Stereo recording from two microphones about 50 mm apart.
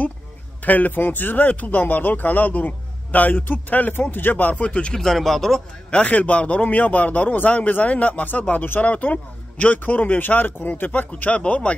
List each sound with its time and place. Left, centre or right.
0.7 s speech: left
4.9 s speech: centre
5.9 s a man's voice: left